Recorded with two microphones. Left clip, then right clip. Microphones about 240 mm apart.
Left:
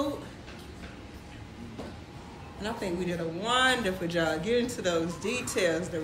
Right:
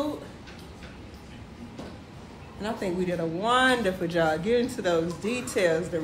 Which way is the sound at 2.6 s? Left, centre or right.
Right.